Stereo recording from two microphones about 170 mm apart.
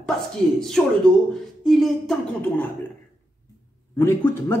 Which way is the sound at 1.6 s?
Centre (ahead or behind).